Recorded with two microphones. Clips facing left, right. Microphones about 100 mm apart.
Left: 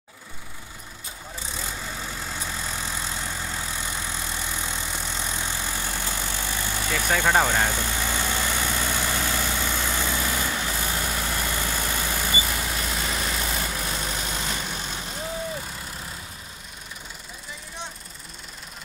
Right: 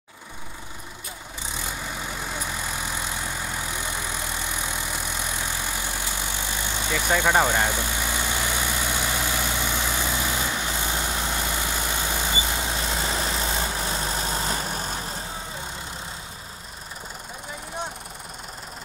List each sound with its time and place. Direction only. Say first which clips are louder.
1.5 s vehicle: right 2 dB; 15° right (ahead or behind); by 15.0 s 40° right (ahead or behind)